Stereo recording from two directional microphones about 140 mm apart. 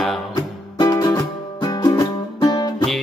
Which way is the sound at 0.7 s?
25° left (ahead or behind).